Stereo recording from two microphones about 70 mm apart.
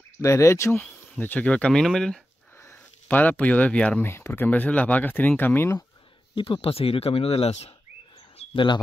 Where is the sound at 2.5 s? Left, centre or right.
Left; by 4.0 s centre.